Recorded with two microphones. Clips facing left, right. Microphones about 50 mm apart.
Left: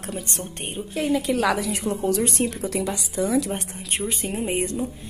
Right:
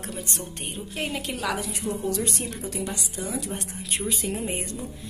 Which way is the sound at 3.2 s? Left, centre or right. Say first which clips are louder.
Left 9 dB; left.